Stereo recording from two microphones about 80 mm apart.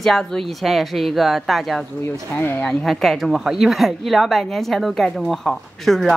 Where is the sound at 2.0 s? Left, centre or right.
Left.